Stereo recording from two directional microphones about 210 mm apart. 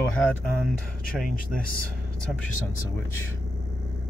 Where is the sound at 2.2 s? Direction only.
5° left (ahead or behind).